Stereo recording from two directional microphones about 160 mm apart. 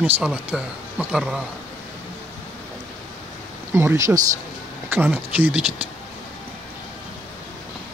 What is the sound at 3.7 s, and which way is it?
Speech, 15° right (ahead or behind).